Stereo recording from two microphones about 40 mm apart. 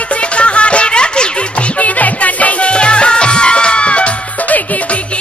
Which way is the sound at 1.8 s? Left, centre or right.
Left.